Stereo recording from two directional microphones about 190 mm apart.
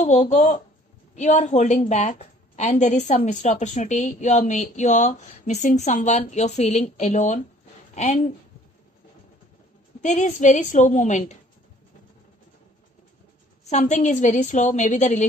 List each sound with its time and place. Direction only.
0.0 s a woman's voice: 40° left (ahead or behind)
10.0 s a woman's voice: 40° left (ahead or behind)
13.7 s a woman's voice: 40° left (ahead or behind)